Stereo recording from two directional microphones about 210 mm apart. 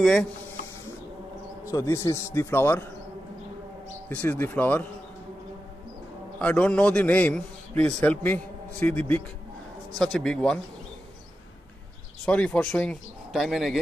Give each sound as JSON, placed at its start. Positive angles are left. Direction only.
{"t": 0.0, "sound": "speech", "side_deg": 0}
{"t": 1.7, "sound": "a man's voice", "side_deg": 15}
{"t": 4.1, "sound": "a man's voice", "side_deg": 10}
{"t": 6.4, "sound": "a man's voice", "side_deg": 5}
{"t": 12.3, "sound": "speech", "side_deg": 5}